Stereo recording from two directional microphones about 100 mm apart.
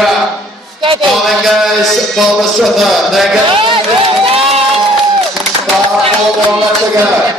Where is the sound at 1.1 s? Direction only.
Centre (ahead or behind).